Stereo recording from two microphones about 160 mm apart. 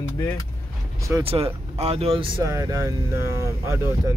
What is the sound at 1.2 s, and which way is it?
Speech, 35° right (ahead or behind).